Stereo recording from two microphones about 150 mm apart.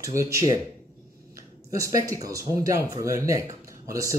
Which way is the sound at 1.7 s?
20° right (ahead or behind).